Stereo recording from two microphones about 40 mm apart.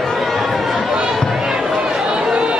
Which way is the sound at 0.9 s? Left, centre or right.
Centre.